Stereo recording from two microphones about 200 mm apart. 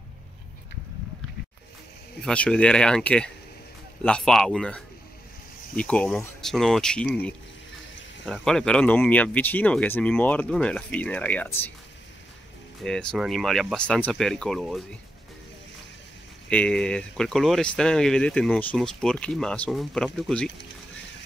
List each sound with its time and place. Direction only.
2.2 s speech: 5° left (ahead or behind)
8.3 s speech: 5° left (ahead or behind)
12.8 s speech: 5° left (ahead or behind)
16.4 s speech: 5° left (ahead or behind)